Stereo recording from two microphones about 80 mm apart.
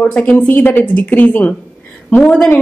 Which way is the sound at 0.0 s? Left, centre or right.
Centre.